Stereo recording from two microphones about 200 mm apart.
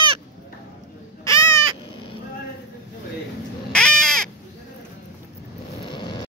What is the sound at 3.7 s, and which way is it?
Crow, 5° left (ahead or behind).